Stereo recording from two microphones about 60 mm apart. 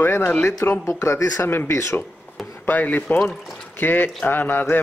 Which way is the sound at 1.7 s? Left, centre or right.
Left.